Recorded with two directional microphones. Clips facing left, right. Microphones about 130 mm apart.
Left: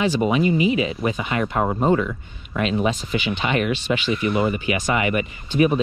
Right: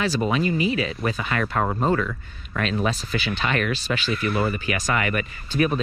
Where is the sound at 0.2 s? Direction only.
15° left (ahead or behind).